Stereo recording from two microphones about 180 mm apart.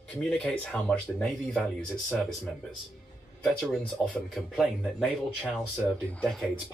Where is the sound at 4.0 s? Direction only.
5° left (ahead or behind).